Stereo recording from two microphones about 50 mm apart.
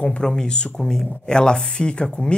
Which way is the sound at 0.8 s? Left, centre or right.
Centre.